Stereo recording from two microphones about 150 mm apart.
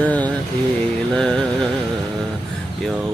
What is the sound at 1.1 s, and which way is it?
Music, 5° left (ahead or behind).